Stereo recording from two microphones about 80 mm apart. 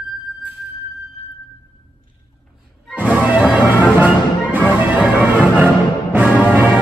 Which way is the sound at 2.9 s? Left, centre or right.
Centre.